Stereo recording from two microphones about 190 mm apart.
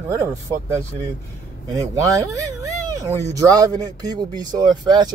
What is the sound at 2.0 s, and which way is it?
Speech, 15° right (ahead or behind).